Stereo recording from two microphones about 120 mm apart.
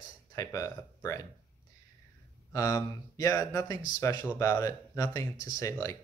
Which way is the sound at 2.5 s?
25° left (ahead or behind).